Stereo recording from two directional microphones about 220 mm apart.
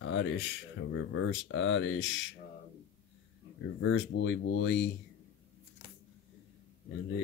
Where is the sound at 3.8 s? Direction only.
55° left (ahead or behind).